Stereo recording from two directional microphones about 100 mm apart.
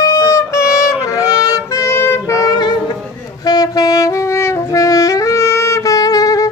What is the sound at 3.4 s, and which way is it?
Saxophone, 40° left (ahead or behind).